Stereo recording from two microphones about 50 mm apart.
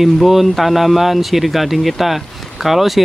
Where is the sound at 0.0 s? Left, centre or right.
Centre.